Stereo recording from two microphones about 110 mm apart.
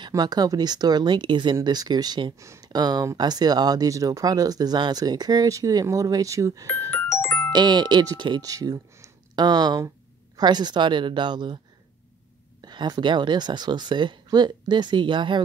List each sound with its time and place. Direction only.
0.1 s speech: 40° right (ahead or behind)
2.3 s speech: 25° right (ahead or behind)
2.7 s speech: 40° right (ahead or behind)
6.9 s music: 20° left (ahead or behind)
7.5 s speech: 40° right (ahead or behind)
12.6 s speech: 40° right (ahead or behind)